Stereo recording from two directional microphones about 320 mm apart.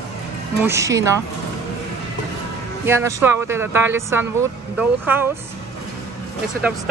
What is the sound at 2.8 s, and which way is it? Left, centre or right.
Speech, centre.